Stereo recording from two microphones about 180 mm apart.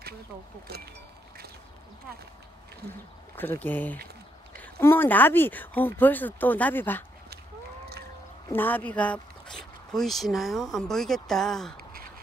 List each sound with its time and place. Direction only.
3.3 s speech: 10° left (ahead or behind)
8.5 s speech: 10° left (ahead or behind)
11.7 s a sound: 55° right (ahead or behind)